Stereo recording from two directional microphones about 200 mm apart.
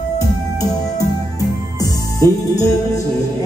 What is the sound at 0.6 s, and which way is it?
Music, 15° left (ahead or behind).